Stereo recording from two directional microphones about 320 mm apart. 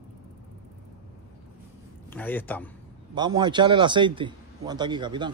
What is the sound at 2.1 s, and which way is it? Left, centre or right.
Speech, centre.